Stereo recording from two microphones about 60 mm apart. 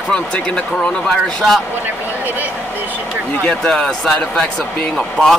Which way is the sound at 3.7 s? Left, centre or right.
Centre.